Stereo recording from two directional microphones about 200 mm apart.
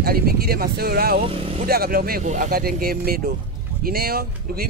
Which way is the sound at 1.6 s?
50° right (ahead or behind).